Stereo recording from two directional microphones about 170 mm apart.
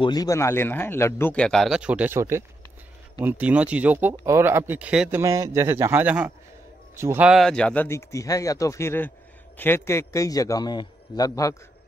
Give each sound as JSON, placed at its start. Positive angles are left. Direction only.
{"t": 0.0, "sound": "speech", "side_deg": 25}
{"t": 5.2, "sound": "speech", "side_deg": -15}
{"t": 7.2, "sound": "a man's voice", "side_deg": 0}